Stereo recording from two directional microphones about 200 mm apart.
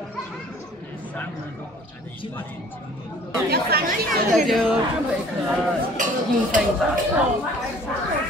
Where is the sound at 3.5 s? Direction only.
45° right (ahead or behind).